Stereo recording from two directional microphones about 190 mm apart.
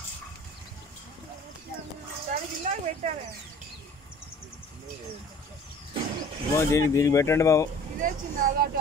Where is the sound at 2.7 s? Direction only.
35° right (ahead or behind).